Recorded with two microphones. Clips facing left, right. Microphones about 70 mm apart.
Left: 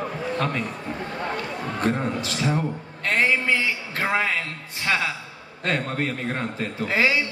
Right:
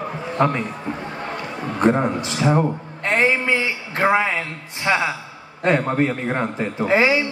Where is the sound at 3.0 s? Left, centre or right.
Right.